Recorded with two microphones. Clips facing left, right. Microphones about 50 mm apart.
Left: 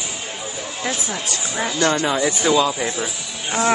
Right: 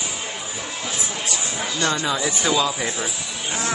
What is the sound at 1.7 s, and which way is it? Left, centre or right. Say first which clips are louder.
Speech: left 4 dB; left.